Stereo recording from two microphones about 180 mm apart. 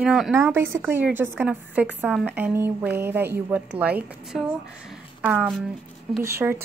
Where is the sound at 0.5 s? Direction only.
15° right (ahead or behind).